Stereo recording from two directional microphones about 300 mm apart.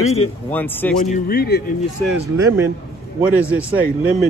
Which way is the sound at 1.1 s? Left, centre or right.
Left.